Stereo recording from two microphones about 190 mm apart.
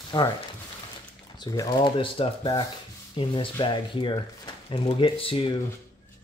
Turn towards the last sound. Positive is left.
turn(degrees=30)  # may be behind; listen again after turning